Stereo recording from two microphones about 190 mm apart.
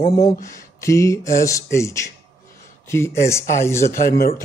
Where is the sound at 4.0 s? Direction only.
50° left (ahead or behind).